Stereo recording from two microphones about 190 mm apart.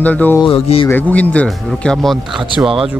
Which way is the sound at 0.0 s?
10° left (ahead or behind).